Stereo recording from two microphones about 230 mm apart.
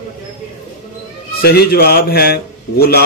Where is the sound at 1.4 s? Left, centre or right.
Left.